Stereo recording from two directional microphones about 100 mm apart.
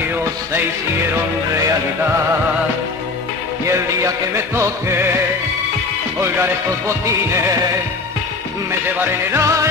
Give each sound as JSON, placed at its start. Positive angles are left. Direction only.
{"t": 3.6, "sound": "music", "side_deg": -30}
{"t": 6.2, "sound": "music", "side_deg": -25}
{"t": 9.0, "sound": "music", "side_deg": -25}